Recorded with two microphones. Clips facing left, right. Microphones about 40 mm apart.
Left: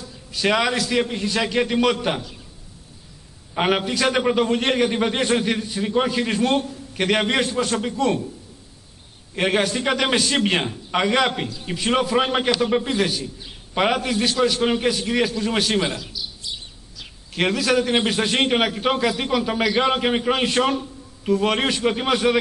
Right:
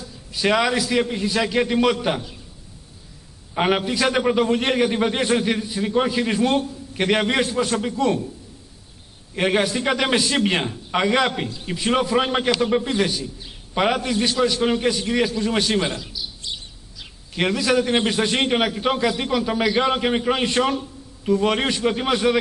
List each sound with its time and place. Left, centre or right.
0.3 s a man's voice: centre
3.5 s a man's voice: centre
9.3 s a man's voice: centre
16.5 s bird: centre
17.0 s a man's voice: centre